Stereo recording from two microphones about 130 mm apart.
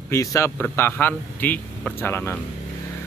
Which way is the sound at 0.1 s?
25° left (ahead or behind).